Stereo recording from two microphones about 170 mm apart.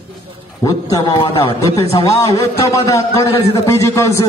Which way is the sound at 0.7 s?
20° left (ahead or behind).